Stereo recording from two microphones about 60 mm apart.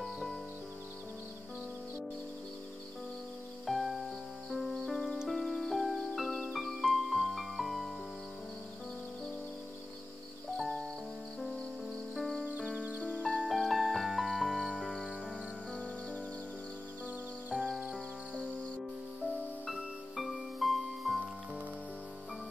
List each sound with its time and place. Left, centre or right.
0.0 s music: centre
3.6 s music: centre
11.9 s music: centre
12.4 s music: right
13.2 s music: centre
13.5 s music: centre
17.9 s music: centre
20.2 s music: centre
20.5 s music: centre